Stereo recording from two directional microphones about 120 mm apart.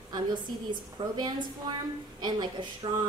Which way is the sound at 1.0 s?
45° right (ahead or behind).